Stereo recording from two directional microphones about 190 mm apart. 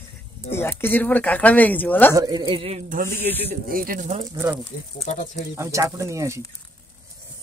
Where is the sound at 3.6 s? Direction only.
50° right (ahead or behind).